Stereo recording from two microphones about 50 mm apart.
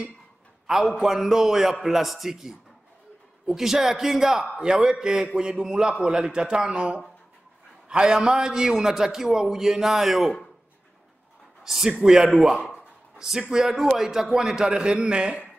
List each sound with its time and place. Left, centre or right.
0.9 s a man's voice: centre
11.6 s a man's voice: centre